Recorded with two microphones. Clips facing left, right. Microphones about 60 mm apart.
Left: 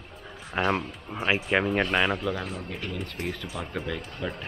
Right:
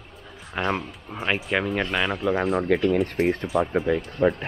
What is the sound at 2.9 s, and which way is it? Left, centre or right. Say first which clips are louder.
Speech: right 13 dB; right.